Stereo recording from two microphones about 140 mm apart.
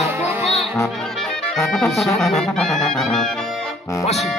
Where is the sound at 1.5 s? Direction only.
Centre (ahead or behind).